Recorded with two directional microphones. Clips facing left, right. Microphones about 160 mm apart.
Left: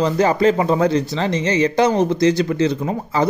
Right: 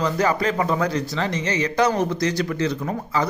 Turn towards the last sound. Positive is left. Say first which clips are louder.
# left 3 dB
turn(degrees=25)  # may be behind; listen again after turning